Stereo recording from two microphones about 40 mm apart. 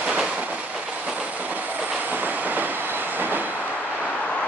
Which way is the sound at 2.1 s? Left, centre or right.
Right.